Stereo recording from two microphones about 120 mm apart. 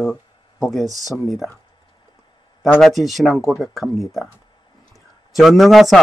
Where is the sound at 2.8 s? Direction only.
Centre (ahead or behind).